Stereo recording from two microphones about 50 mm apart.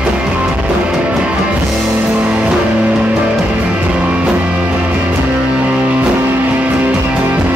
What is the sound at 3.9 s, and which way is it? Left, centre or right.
Music, right.